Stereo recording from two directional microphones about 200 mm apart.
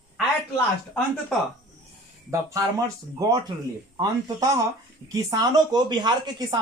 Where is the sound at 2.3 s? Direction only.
15° right (ahead or behind).